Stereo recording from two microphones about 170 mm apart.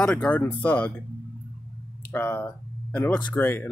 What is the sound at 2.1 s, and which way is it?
Speech, 10° left (ahead or behind).